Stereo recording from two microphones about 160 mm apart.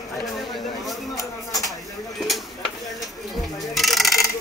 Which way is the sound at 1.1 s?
20° left (ahead or behind).